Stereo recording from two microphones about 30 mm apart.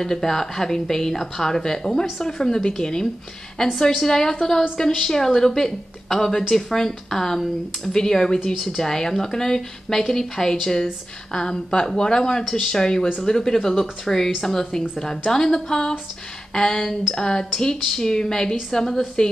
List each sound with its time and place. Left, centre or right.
0.0 s a woman's voice: centre